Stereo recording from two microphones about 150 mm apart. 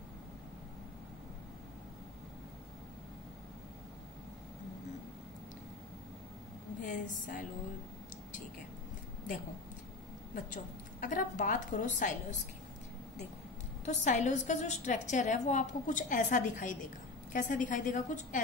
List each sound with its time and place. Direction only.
6.8 s a woman's voice: 60° left (ahead or behind)
10.3 s a woman's voice: 60° left (ahead or behind)
13.8 s a woman's voice: 55° left (ahead or behind)